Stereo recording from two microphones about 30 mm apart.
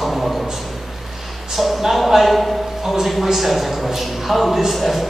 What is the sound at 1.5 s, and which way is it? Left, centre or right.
Speech, centre.